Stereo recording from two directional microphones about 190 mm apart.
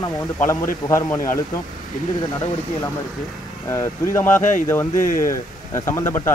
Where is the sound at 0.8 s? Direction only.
15° left (ahead or behind).